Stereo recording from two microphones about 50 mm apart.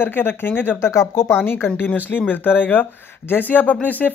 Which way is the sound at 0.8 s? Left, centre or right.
Left.